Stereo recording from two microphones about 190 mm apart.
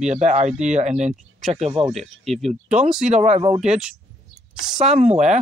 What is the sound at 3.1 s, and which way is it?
Speech, 35° right (ahead or behind).